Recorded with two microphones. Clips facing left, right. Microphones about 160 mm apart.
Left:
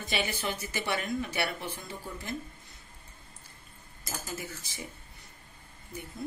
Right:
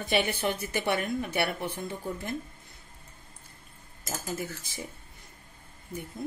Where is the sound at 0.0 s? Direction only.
55° right (ahead or behind).